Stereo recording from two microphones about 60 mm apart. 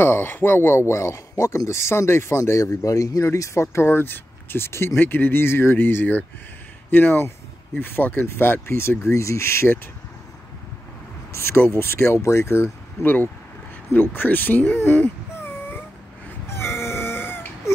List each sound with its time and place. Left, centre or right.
0.0 s speech: left
3.6 s speech: left
9.0 s speech: left
11.3 s speech: left
13.0 s speech: left
14.8 s wail: left
16.4 s a sound: left